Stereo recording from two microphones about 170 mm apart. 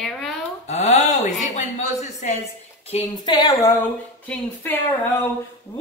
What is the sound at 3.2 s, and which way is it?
Speech, 25° left (ahead or behind).